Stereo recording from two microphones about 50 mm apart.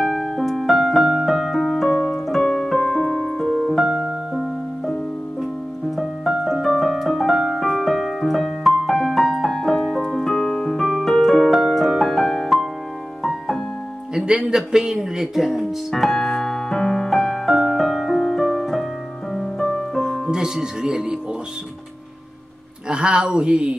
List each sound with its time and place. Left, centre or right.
0.0 s piano: centre
1.9 s keyboard: centre
4.3 s music: centre
5.4 s piano: centre
10.9 s music: centre
14.1 s a sound: centre
15.0 s speech: centre
15.9 s music: centre
20.2 s speech: centre
22.8 s speech: centre